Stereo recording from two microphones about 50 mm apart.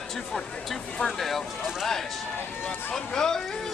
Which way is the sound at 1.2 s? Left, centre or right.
Centre.